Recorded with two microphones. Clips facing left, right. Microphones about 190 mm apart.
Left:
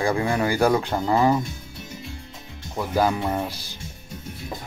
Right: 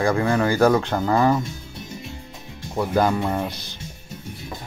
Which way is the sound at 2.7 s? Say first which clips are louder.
Right 2 dB; 5° left (ahead or behind).